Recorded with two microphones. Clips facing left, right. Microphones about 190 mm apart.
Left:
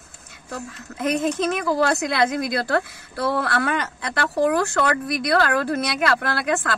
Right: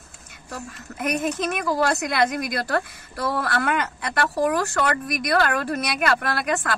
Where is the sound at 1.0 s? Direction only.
25° left (ahead or behind).